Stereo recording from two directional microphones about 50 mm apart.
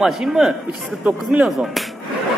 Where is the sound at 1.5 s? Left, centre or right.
Centre.